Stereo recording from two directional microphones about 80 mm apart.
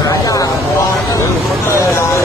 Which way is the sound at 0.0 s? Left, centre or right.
Left.